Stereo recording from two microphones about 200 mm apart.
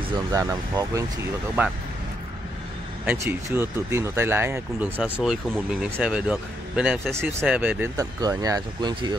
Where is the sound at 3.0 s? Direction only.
10° right (ahead or behind).